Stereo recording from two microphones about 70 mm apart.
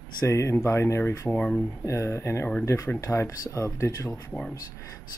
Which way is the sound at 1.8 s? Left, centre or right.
Left.